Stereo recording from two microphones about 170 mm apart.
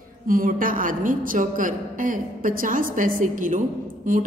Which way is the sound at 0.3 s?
55° right (ahead or behind).